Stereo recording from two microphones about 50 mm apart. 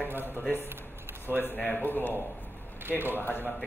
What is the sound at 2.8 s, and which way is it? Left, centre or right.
Speech, right.